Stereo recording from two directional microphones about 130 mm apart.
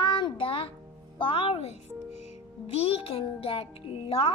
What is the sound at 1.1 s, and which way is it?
Speech, 40° left (ahead or behind).